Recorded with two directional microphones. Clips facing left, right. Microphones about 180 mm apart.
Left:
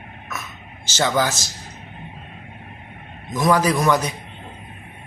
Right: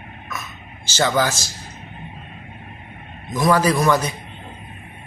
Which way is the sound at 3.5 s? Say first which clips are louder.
Right 1 dB; 15° left (ahead or behind).